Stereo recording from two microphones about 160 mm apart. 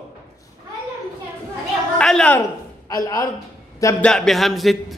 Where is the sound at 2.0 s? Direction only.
5° left (ahead or behind).